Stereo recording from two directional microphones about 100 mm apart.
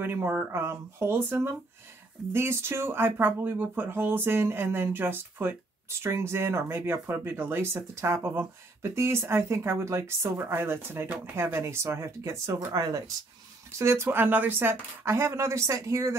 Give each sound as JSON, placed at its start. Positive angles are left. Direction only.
{"t": 0.0, "sound": "speech", "side_deg": -20}